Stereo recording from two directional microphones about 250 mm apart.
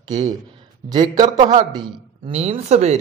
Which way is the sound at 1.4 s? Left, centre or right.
Right.